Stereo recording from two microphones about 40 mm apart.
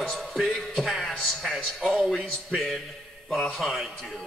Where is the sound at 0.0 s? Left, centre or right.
Centre.